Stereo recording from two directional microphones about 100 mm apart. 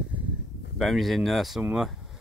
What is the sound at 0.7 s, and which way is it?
Speech, centre (ahead or behind).